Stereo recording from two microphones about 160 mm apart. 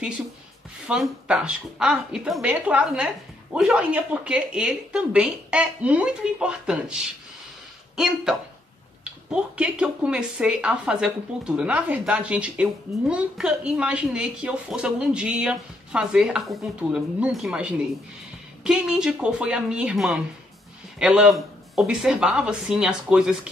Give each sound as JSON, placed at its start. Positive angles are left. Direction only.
{"t": 0.8, "sound": "speech", "side_deg": -5}